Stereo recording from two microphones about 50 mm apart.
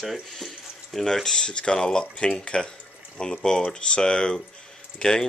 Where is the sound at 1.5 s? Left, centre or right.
Centre.